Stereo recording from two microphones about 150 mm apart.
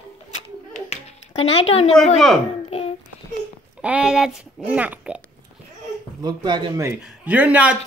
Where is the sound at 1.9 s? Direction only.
Centre (ahead or behind).